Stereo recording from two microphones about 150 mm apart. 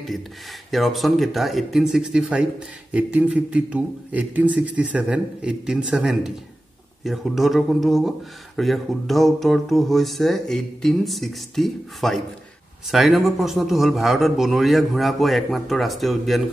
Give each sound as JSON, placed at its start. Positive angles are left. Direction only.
{"t": 0.7, "sound": "a man's voice", "side_deg": 0}